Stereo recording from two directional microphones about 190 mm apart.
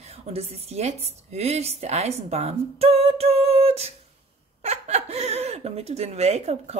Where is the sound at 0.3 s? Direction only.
35° right (ahead or behind).